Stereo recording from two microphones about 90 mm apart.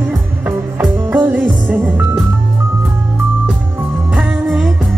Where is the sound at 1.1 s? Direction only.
20° right (ahead or behind).